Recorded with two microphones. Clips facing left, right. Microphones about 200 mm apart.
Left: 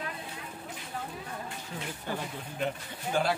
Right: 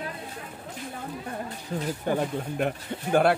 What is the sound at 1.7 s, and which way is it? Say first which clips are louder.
Speech: right 11 dB; 40° right (ahead or behind).